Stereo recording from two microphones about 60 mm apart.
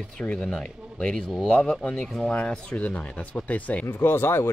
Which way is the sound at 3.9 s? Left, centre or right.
Left.